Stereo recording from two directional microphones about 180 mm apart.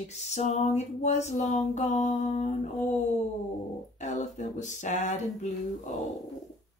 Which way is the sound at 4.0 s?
40° left (ahead or behind).